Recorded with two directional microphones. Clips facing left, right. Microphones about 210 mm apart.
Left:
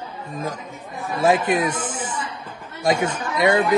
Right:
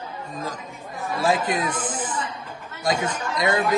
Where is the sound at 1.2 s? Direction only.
25° left (ahead or behind).